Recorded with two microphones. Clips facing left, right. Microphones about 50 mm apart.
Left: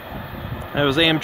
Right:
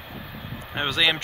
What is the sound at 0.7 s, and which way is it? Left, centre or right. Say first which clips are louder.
Speech: left 6 dB; centre.